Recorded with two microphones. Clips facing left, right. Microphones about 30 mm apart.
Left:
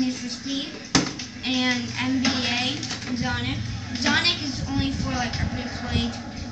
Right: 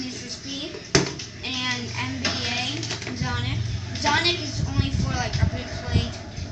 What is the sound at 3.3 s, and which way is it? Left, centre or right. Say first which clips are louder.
Speech: left 2 dB; centre.